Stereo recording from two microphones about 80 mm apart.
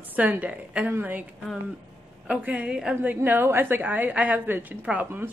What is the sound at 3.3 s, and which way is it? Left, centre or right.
A woman's voice, right.